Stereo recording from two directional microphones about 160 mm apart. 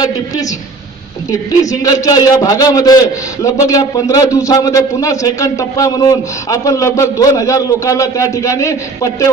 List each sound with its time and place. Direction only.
1.3 s a man's voice: 20° left (ahead or behind)